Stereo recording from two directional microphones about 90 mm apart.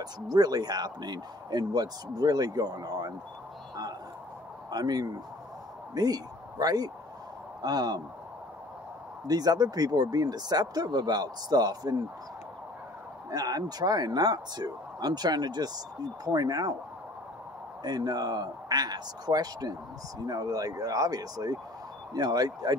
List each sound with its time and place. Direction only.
0.0 s speech: 45° right (ahead or behind)
4.6 s a man's voice: 50° right (ahead or behind)
9.3 s speech: 45° right (ahead or behind)
13.3 s speech: 45° right (ahead or behind)
17.8 s speech: 50° right (ahead or behind)